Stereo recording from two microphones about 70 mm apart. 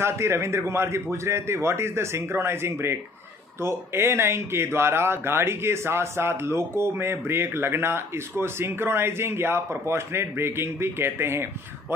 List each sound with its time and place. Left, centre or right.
0.0 s speech: right